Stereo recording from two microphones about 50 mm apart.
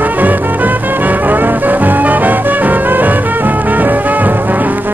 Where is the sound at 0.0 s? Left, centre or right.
Right.